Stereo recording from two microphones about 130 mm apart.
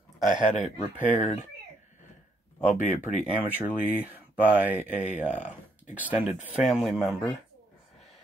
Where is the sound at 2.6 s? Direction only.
65° left (ahead or behind).